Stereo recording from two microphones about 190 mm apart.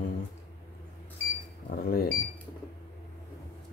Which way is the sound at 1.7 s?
55° left (ahead or behind).